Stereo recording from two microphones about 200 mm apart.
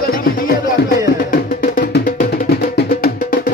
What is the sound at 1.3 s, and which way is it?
Music, 45° left (ahead or behind).